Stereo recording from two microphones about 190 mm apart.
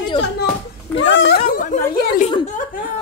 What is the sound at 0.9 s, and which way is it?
Speech, 10° left (ahead or behind).